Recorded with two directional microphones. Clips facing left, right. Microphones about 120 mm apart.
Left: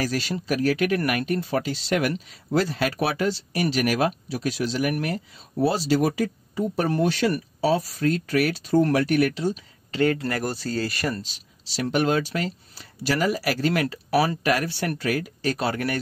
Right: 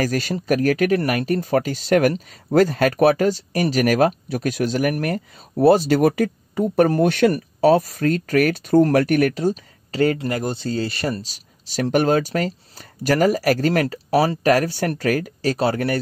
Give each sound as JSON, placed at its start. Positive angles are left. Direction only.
{"t": 0.0, "sound": "speech", "side_deg": -45}
{"t": 10.2, "sound": "speech", "side_deg": -20}
{"t": 11.2, "sound": "speech", "side_deg": -45}